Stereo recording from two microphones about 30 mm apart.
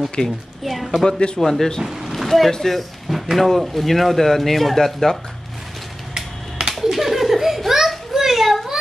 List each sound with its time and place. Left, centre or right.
0.2 s a woman's voice: left
0.7 s a sound: centre
1.4 s speech: centre
1.8 s speech: centre
2.1 s boat: centre
2.6 s speech: centre
6.8 s a sound: centre